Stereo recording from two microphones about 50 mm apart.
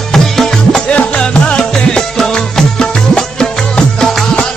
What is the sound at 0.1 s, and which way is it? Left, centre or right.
Music, centre.